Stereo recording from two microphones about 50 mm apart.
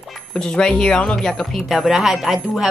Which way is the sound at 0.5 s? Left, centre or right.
Centre.